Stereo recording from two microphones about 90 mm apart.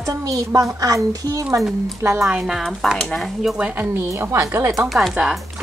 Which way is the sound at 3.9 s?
30° right (ahead or behind).